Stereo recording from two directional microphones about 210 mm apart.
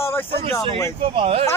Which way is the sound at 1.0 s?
25° right (ahead or behind).